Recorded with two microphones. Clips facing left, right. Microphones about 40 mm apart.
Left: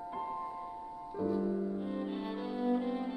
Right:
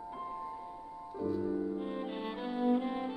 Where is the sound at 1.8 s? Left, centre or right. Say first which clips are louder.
Even; right.